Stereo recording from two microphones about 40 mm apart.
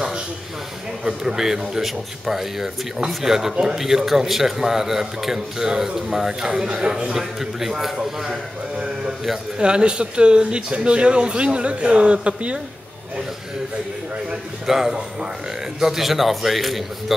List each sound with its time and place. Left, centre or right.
1.0 s a man's voice: centre
7.2 s a man's voice: centre
9.6 s speech: right
14.7 s a man's voice: centre